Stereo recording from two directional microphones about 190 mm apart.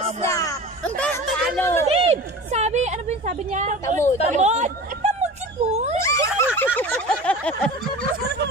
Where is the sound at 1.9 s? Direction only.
35° right (ahead or behind).